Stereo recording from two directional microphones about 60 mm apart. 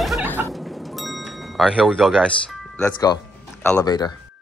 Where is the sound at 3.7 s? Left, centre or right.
Left.